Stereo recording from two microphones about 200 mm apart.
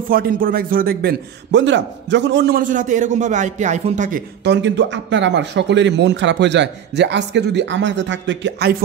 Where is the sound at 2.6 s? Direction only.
40° right (ahead or behind).